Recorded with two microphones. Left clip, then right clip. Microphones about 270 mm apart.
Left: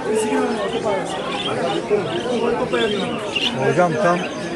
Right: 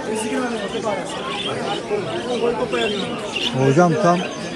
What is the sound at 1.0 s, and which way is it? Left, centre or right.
Speech, centre.